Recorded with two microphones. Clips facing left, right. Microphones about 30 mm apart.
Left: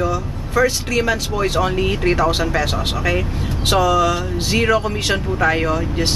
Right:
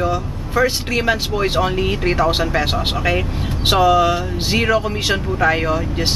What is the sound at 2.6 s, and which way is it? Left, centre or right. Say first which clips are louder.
Speech: right 1 dB; right.